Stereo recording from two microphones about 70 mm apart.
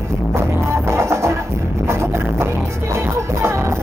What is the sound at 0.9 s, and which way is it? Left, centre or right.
Music, right.